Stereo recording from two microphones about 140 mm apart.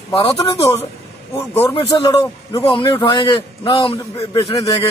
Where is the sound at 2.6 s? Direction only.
35° left (ahead or behind).